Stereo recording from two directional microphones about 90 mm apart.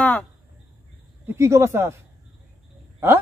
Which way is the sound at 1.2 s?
30° right (ahead or behind).